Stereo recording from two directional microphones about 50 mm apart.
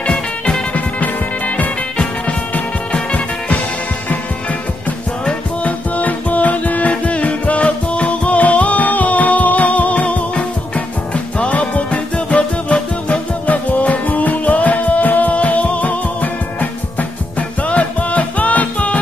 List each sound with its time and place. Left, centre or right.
0.0 s music: centre
0.7 s music: left
2.9 s music: left
5.6 s music: left